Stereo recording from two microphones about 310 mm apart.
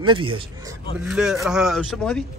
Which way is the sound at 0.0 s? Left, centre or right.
Centre.